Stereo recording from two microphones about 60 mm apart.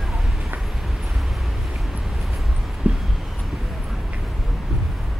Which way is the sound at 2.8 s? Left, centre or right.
Right.